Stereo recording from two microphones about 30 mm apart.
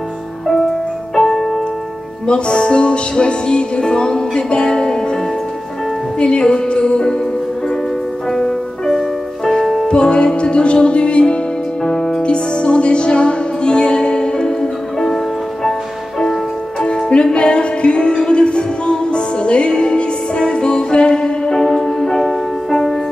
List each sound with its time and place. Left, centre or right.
1.1 s music: centre
2.2 s music: left
6.1 s music: left
8.3 s music: centre
9.8 s music: left
11.8 s music: centre
12.2 s music: left
16.8 s music: left